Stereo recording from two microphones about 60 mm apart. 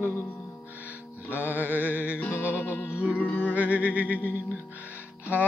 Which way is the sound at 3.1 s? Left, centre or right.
Left.